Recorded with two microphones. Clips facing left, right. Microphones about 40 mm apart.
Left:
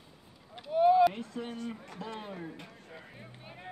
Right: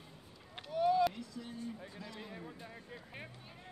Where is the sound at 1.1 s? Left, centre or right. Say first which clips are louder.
Left 7 dB; left.